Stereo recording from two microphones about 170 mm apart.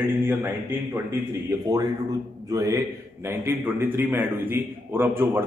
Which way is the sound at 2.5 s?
20° right (ahead or behind).